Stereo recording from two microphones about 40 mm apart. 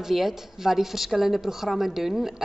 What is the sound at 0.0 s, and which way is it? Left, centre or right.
A woman's voice, centre.